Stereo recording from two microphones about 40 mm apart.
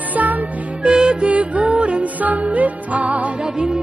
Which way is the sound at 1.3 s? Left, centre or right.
Right.